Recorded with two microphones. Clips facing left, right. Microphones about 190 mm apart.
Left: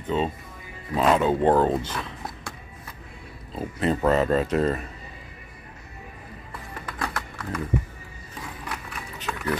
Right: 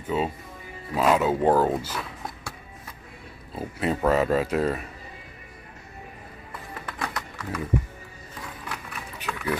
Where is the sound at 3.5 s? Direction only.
5° right (ahead or behind).